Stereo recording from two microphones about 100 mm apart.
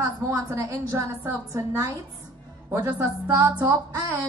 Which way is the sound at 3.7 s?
40° right (ahead or behind).